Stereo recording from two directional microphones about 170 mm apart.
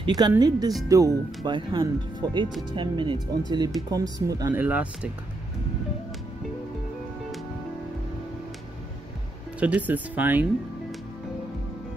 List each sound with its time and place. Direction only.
0.0 s speech: 25° right (ahead or behind)
4.6 s speech: 10° right (ahead or behind)
9.6 s speech: 10° right (ahead or behind)